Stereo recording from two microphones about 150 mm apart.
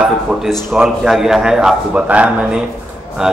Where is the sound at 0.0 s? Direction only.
5° right (ahead or behind).